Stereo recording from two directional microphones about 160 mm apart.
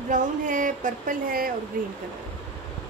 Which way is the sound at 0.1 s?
55° right (ahead or behind).